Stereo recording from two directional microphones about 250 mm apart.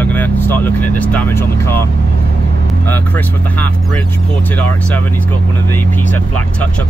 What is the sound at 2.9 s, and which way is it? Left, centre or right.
Speech, centre.